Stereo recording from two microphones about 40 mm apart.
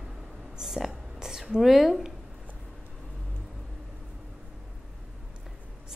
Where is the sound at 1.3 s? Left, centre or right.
Centre.